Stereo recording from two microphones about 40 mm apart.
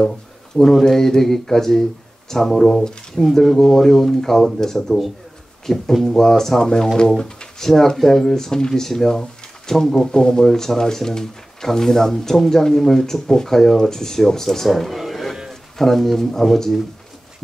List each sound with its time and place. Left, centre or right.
0.6 s speech: centre